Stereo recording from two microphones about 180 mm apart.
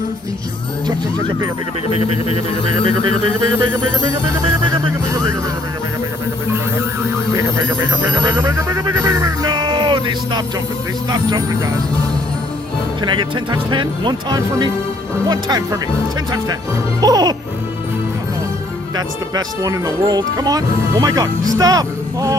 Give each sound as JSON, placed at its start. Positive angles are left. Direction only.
{"t": 8.2, "sound": "music", "side_deg": -20}
{"t": 11.1, "sound": "speech", "side_deg": -20}
{"t": 13.0, "sound": "speech", "side_deg": -25}
{"t": 17.0, "sound": "speech", "side_deg": -20}
{"t": 18.9, "sound": "speech", "side_deg": -20}